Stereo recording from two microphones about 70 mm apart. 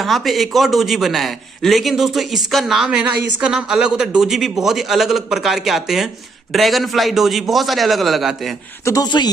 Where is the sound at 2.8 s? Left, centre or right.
Centre.